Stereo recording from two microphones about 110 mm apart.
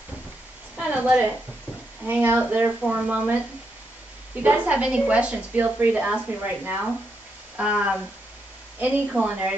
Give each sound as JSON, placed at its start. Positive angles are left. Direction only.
{"t": 0.7, "sound": "a woman's voice", "side_deg": -10}
{"t": 4.4, "sound": "a woman's voice", "side_deg": -15}